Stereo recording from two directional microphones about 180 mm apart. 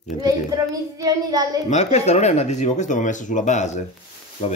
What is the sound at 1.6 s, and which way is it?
Speech, 40° left (ahead or behind).